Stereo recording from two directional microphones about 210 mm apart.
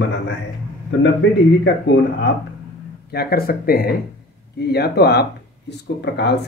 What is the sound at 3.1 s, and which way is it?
Speech, 45° left (ahead or behind).